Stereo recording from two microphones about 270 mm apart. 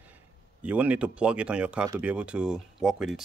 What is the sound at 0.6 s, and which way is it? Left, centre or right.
Speech, centre.